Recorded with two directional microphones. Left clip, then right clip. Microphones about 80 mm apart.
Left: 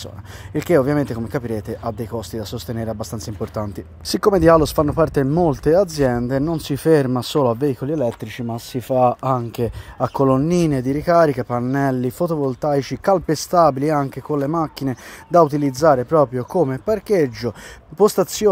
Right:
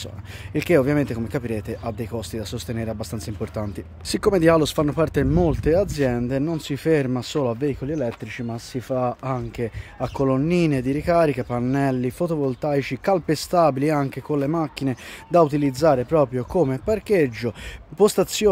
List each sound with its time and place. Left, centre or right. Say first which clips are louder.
0.6 s speech: left 2 dB; centre
1.0 s speech: left 2 dB; centre
4.2 s speech: left 4 dB; left
5.2 s speech: left 3 dB; centre
5.5 s speech: left 4 dB; left
6.5 s speech: left 6 dB; left
7.2 s speech: left 6 dB; left
10.0 s speech: left 5 dB; left
10.7 s speech: left 4 dB; left
11.8 s speech: left 3 dB; left
13.7 s speech: left 3 dB; centre
15.3 s speech: left 3 dB; left
16.3 s speech: left 2 dB; centre